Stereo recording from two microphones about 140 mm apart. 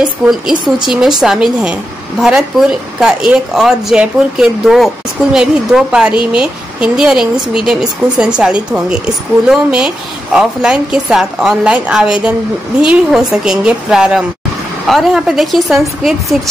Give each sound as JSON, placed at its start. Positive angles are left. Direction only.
{"t": 0.8, "sound": "a woman's voice", "side_deg": -5}